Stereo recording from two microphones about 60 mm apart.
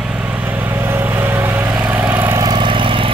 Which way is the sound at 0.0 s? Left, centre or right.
Right.